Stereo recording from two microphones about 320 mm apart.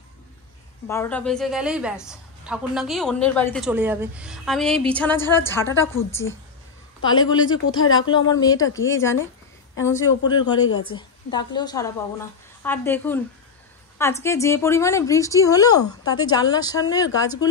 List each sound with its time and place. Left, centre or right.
0.8 s a woman's voice: centre
10.6 s a woman's voice: left
11.0 s speech: centre
14.2 s speech: centre